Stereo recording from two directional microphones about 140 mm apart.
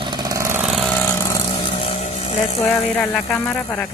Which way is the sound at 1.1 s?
20° left (ahead or behind).